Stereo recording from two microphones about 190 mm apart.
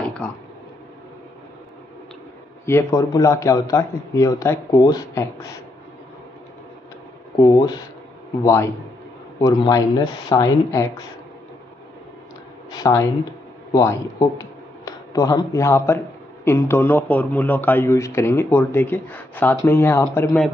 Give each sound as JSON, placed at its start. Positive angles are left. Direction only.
{"t": 0.2, "sound": "speech", "side_deg": 5}
{"t": 2.6, "sound": "speech", "side_deg": 15}
{"t": 7.3, "sound": "speech", "side_deg": 20}
{"t": 9.4, "sound": "speech", "side_deg": 20}
{"t": 12.7, "sound": "speech", "side_deg": 15}